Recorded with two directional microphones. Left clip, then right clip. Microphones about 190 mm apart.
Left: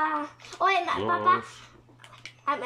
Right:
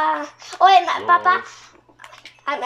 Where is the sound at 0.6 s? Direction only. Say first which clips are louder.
Right 11 dB; 30° left (ahead or behind).